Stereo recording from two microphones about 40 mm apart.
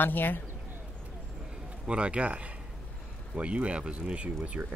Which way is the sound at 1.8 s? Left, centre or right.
Right.